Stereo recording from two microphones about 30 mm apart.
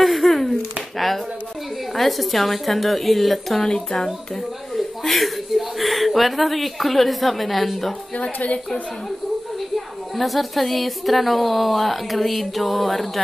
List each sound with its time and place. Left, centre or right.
0.0 s a sound: centre
2.0 s a woman's voice: centre
4.7 s speech: centre
8.2 s a woman's voice: left
9.8 s a woman's voice: centre